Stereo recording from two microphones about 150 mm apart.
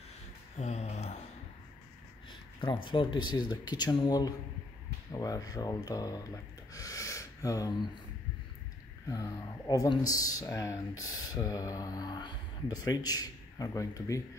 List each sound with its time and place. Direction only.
0.6 s a sound: 50° left (ahead or behind)
2.6 s speech: 35° left (ahead or behind)
6.7 s gasp: 20° left (ahead or behind)
9.1 s speech: 25° left (ahead or behind)